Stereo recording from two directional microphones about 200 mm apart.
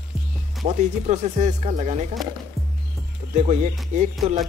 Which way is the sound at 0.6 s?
35° right (ahead or behind).